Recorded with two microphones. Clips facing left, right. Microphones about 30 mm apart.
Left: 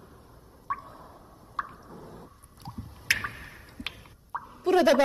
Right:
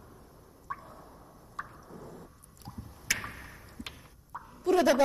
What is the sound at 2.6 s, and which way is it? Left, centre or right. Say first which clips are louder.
Drip: left 6 dB; left.